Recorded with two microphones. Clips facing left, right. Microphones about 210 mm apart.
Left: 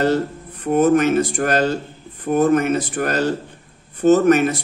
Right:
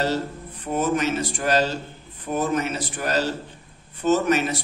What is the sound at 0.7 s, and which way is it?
Speech, 55° left (ahead or behind).